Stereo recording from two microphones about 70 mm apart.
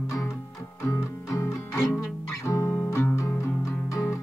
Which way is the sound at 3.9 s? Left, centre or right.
Left.